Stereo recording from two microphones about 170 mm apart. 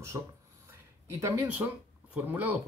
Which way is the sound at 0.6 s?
15° right (ahead or behind).